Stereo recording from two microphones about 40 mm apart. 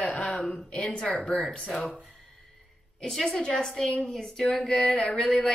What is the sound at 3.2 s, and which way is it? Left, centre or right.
Speech, centre.